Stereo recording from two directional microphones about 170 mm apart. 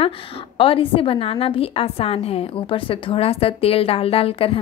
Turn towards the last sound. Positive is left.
turn(degrees=35)  # may be behind; listen again after turning